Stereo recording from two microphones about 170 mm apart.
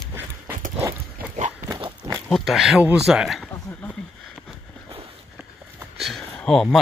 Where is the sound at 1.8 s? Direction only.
25° right (ahead or behind).